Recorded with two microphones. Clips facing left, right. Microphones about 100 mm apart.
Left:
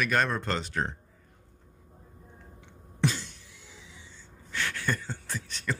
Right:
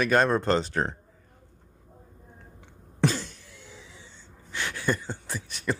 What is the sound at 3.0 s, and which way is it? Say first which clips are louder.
Cough: right 4 dB; 40° right (ahead or behind).